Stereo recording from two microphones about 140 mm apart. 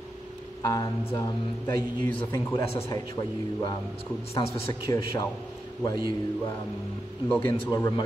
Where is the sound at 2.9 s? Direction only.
25° left (ahead or behind).